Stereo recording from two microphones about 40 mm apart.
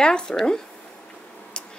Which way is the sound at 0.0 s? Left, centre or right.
Left.